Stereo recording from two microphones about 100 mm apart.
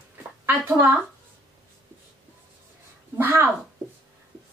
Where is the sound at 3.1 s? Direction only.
20° right (ahead or behind).